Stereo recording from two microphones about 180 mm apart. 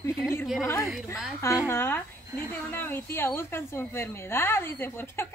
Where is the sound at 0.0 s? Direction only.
15° left (ahead or behind).